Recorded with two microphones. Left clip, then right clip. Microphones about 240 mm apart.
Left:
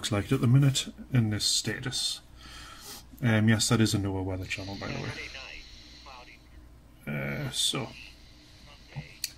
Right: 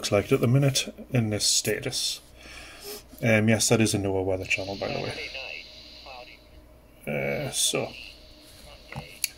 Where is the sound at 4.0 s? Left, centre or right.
Centre.